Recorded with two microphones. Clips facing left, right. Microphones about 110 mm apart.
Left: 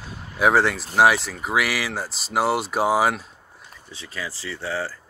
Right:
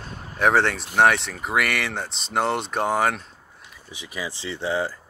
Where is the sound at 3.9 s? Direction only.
15° right (ahead or behind).